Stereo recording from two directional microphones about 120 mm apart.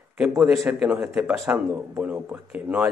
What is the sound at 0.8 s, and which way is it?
Speech, 5° right (ahead or behind).